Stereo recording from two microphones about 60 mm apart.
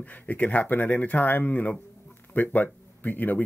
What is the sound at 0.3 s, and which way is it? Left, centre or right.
Speech, left.